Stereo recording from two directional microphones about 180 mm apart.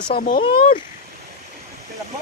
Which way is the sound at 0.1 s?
55° left (ahead or behind).